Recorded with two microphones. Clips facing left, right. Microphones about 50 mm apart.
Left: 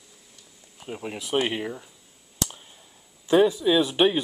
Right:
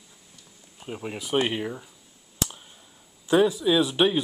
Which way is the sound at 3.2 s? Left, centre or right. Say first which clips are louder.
Left 1 dB; centre.